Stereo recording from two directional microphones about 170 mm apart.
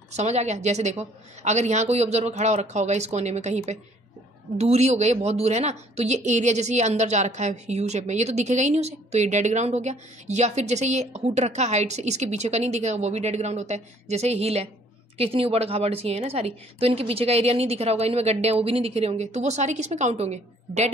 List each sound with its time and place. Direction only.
0.1 s a woman's voice: 40° right (ahead or behind)